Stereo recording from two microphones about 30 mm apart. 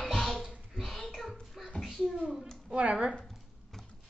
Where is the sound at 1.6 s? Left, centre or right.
Centre.